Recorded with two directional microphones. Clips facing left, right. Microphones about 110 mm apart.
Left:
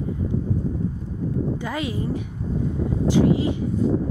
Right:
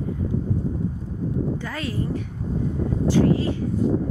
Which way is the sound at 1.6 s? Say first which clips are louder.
Left 2 dB; 15° left (ahead or behind).